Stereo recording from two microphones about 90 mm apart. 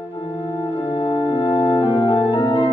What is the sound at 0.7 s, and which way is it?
Organ, 70° left (ahead or behind).